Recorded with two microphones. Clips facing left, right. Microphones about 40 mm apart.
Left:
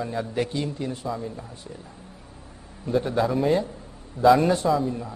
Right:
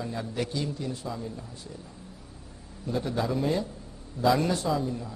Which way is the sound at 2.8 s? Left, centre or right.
Left.